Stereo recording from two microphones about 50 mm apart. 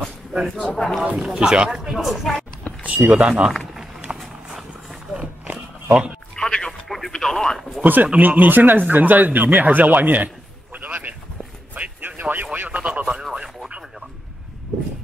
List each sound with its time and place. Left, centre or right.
0.3 s speech: centre
0.7 s speech: centre
1.1 s speech: centre
2.7 s power windows: left
3.2 s speech: right
4.2 s run: centre
5.9 s speech: right
6.3 s a sound: centre
6.9 s a sound: centre
7.8 s speech: right
11.7 s a sound: right
12.5 s radio: right
13.1 s radio: centre